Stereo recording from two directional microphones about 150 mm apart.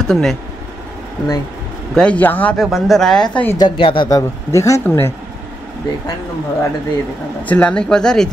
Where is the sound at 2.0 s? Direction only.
10° left (ahead or behind).